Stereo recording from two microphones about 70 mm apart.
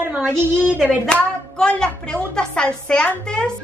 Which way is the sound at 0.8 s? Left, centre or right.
Centre.